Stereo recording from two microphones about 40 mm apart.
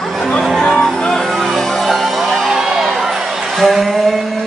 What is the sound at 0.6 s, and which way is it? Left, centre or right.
Music, centre.